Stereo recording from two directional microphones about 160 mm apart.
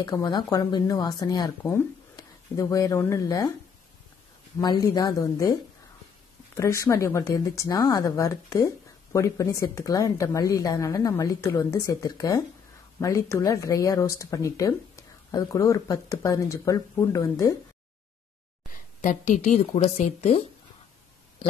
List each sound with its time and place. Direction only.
0.0 s speech: 25° left (ahead or behind)
4.6 s speech: 25° left (ahead or behind)
18.7 s a woman's voice: 50° left (ahead or behind)